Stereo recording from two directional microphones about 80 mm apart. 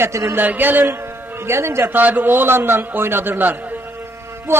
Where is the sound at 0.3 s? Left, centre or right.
Right.